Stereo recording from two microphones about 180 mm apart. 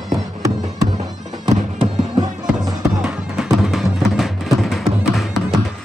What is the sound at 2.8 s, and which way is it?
Music, 5° right (ahead or behind).